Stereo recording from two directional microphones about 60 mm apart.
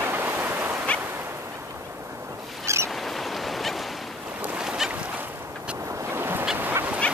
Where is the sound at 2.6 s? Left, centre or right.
Right.